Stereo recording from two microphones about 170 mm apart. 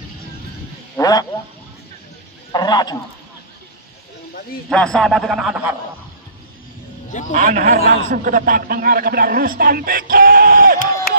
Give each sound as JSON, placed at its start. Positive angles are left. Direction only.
{"t": 0.9, "sound": "a sound", "side_deg": 20}
{"t": 2.5, "sound": "a man's voice", "side_deg": 25}
{"t": 4.6, "sound": "a man's voice", "side_deg": 5}
{"t": 7.1, "sound": "a man's voice", "side_deg": 45}
{"t": 7.3, "sound": "a man's voice", "side_deg": -50}